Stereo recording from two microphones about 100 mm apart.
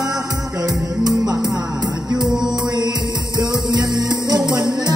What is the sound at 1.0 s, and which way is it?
Music, 40° right (ahead or behind).